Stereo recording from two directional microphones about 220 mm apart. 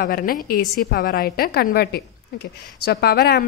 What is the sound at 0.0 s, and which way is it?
A woman's voice, 40° left (ahead or behind).